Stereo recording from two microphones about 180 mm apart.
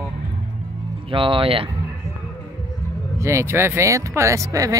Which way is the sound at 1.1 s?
30° right (ahead or behind).